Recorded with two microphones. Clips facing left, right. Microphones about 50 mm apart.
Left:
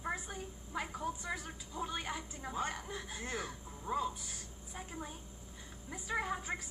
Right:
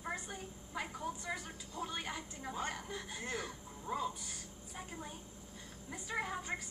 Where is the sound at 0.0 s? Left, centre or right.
Centre.